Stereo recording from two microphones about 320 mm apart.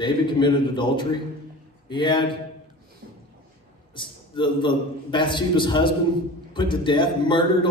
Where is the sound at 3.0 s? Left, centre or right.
Right.